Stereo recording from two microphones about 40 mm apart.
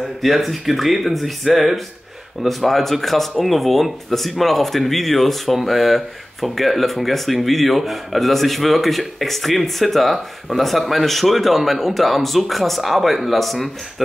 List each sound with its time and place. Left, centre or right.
0.0 s speech: centre